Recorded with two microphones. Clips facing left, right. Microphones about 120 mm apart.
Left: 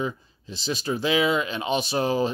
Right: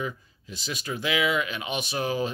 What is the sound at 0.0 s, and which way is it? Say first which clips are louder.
Speech: left 4 dB; 30° left (ahead or behind).